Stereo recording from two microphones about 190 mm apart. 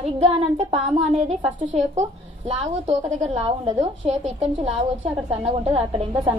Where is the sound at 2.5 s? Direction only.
35° right (ahead or behind).